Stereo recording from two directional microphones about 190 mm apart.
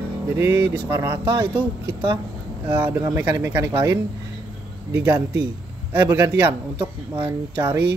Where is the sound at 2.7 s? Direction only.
15° right (ahead or behind).